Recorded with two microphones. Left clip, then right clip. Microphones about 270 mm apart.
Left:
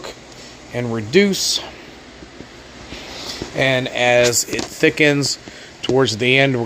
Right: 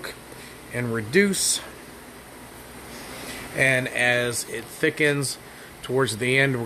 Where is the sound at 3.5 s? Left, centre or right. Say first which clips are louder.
Left 3 dB; centre.